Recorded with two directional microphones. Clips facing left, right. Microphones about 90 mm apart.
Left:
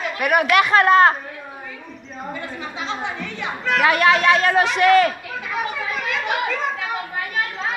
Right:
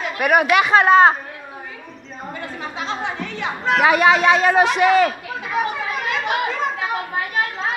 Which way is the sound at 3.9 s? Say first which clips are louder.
Right 1 dB; 20° right (ahead or behind).